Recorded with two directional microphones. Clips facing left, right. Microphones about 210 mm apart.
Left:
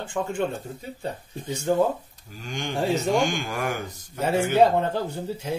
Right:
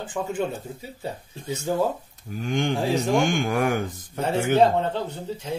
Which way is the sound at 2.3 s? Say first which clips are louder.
Right 5 dB; 55° right (ahead or behind).